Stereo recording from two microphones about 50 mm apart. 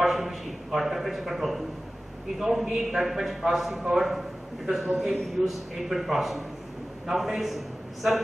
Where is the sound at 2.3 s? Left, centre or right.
Centre.